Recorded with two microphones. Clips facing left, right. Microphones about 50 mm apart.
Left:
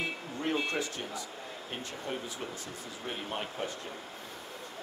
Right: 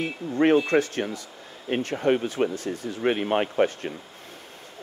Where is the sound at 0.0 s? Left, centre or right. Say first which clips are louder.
Right 12 dB; right.